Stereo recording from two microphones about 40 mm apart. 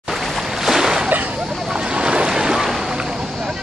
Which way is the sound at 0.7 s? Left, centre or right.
Centre.